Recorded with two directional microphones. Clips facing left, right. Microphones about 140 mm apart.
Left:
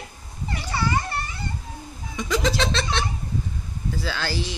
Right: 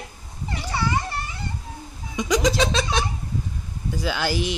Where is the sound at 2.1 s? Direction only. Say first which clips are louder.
Right 3 dB; 15° right (ahead or behind).